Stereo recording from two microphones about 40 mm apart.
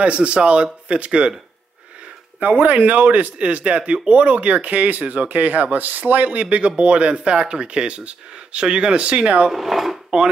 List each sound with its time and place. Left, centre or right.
0.0 s speech: right
2.4 s speech: right
6.4 s speech: right
9.5 s speech: centre